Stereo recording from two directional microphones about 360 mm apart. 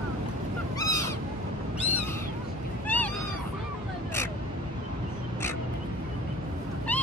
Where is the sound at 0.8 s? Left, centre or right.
Centre.